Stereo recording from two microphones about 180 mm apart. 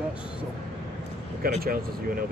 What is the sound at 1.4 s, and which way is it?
Speech, 55° right (ahead or behind).